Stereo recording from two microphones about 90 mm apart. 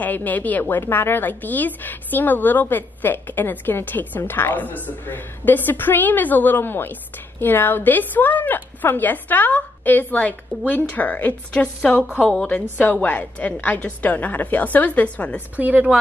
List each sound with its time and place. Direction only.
0.0 s a woman's voice: 20° left (ahead or behind)
15.5 s a woman's voice: 15° right (ahead or behind)